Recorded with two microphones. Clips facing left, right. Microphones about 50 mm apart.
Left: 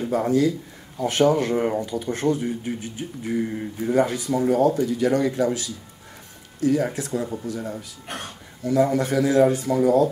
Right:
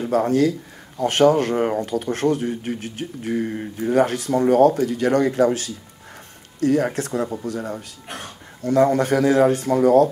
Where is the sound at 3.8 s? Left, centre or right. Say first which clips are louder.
Right 2 dB; right.